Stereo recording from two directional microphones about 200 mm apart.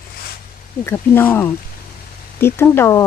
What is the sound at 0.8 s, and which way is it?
Speech, 10° left (ahead or behind).